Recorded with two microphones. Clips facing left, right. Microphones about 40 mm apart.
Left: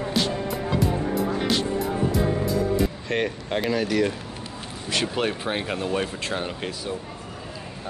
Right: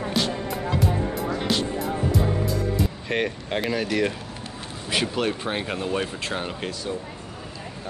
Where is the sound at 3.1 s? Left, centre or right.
Centre.